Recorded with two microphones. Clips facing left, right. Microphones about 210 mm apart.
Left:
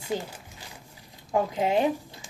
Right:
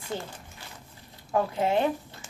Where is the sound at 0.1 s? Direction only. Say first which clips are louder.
Left 4 dB; 10° left (ahead or behind).